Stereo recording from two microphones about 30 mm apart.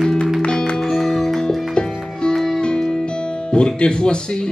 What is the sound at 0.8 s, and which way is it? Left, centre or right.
Music, centre.